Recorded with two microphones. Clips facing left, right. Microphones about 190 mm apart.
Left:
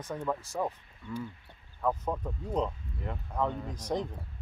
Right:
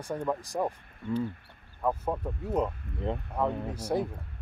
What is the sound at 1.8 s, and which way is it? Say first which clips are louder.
Speech: right 1 dB; 10° right (ahead or behind).